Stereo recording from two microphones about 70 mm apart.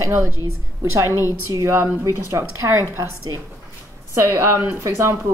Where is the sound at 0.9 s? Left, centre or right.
Right.